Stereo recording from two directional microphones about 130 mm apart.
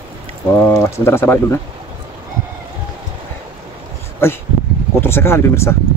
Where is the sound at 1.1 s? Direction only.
20° left (ahead or behind).